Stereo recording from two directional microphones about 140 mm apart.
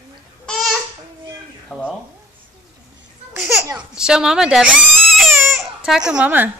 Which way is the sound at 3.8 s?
5° right (ahead or behind).